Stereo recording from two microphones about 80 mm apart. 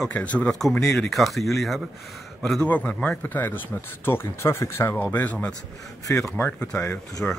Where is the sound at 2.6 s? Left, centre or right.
Centre.